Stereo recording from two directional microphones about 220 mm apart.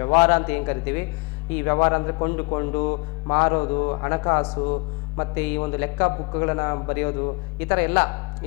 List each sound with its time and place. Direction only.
0.0 s speech: 15° left (ahead or behind)